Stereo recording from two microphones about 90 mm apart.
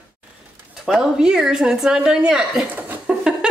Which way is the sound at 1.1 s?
5° right (ahead or behind).